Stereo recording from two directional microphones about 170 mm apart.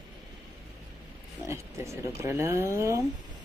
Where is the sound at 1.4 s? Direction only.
15° right (ahead or behind).